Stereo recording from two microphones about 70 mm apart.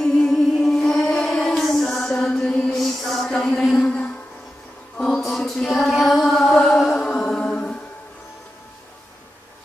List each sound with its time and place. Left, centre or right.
0.0 s music: centre
2.7 s music: centre
5.2 s mantra: centre
6.5 s music: centre
6.8 s music: centre